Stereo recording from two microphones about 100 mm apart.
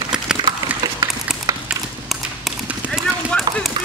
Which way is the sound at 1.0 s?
40° right (ahead or behind).